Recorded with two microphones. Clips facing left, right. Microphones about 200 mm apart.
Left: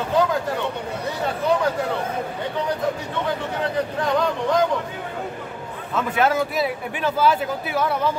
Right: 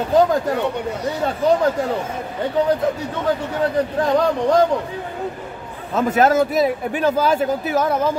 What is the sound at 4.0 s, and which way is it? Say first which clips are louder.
Speech: right 5 dB; 35° right (ahead or behind).